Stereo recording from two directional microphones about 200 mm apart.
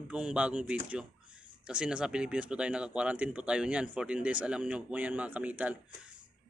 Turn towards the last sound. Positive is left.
turn(degrees=-5)  # may be behind; listen again after turning